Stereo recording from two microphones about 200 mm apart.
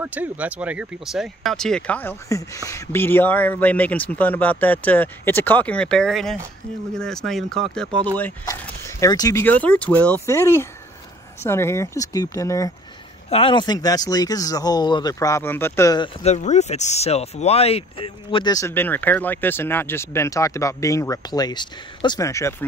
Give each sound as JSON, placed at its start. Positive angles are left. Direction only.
{"t": 0.0, "sound": "speech", "side_deg": -10}
{"t": 8.2, "sound": "speech", "side_deg": 15}
{"t": 13.3, "sound": "speech", "side_deg": 25}
{"t": 16.2, "sound": "speech", "side_deg": 35}